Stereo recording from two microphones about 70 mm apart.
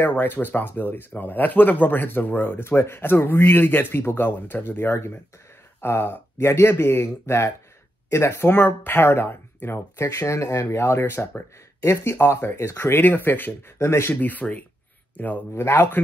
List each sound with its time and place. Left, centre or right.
0.0 s speech: left
10.0 s speech: left
13.7 s speech: left
14.3 s speech: left
15.5 s speech: left